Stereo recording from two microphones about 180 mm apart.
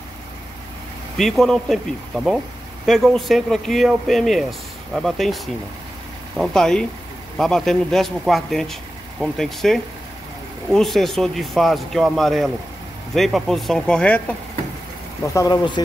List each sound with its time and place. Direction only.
1.1 s speech: centre (ahead or behind)
15.3 s speech: 20° left (ahead or behind)